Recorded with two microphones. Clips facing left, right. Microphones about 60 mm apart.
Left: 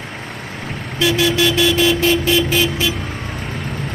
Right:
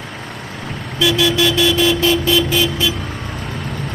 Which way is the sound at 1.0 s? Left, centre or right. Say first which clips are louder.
Right 1 dB; left.